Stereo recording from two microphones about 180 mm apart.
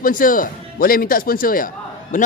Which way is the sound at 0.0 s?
50° left (ahead or behind).